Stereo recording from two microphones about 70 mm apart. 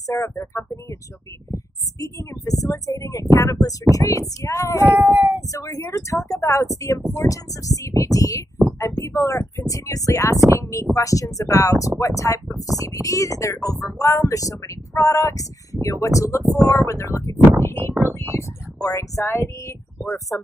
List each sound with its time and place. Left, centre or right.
0.0 s speech: left
4.8 s child singing: right
5.5 s speech: left
10.3 s speech: right
10.6 s speech: left
18.3 s speech: left
19.2 s a sound: left
20.1 s speech: left